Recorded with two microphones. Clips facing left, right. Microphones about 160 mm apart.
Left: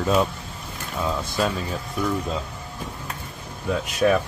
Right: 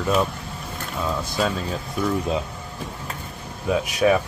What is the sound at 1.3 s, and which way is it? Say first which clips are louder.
Speech: right 1 dB; 5° left (ahead or behind).